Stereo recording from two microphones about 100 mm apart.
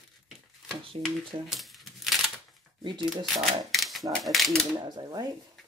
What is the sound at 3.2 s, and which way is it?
Speech, centre (ahead or behind).